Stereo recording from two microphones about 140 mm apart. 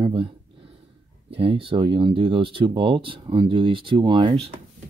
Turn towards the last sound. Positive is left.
turn(degrees=-35)  # may be behind; listen again after turning